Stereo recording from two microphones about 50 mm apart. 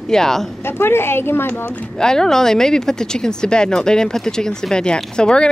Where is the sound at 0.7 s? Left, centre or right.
Left.